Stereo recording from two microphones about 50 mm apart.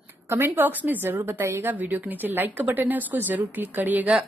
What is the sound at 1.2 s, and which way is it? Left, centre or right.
Speech, right.